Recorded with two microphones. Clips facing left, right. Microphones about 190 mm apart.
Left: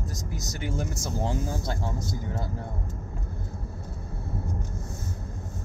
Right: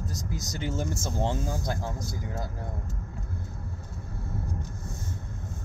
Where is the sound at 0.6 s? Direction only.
25° right (ahead or behind).